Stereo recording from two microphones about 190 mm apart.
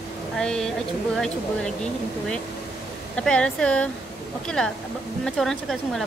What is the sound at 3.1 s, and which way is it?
Speech, 5° left (ahead or behind).